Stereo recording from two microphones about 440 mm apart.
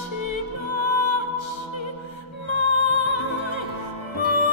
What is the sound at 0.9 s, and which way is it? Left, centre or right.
Music, left.